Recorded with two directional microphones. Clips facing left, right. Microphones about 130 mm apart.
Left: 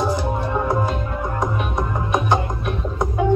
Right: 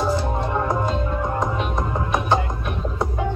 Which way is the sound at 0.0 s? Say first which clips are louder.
Left 1 dB; 15° left (ahead or behind).